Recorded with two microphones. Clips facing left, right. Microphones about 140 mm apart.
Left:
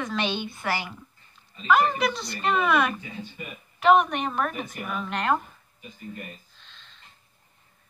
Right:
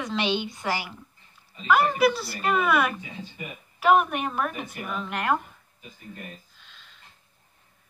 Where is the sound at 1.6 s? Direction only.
5° right (ahead or behind).